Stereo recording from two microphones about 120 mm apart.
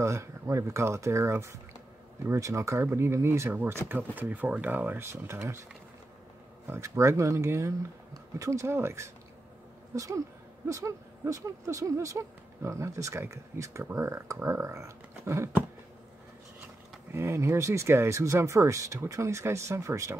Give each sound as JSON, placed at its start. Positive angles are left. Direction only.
{"t": 0.0, "sound": "speech", "side_deg": -25}
{"t": 6.7, "sound": "speech", "side_deg": -25}
{"t": 17.1, "sound": "speech", "side_deg": -20}